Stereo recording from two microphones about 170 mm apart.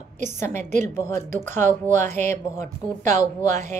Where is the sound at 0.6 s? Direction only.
45° right (ahead or behind).